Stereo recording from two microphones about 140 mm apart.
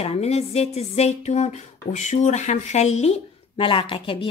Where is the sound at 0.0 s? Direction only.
50° left (ahead or behind).